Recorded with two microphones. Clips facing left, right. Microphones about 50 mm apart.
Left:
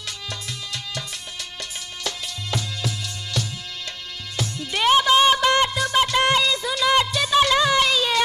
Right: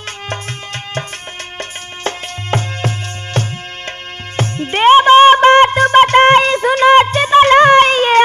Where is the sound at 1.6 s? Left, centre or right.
Right.